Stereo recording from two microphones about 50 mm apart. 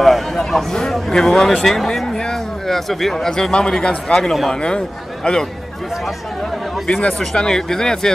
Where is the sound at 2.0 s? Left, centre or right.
Centre.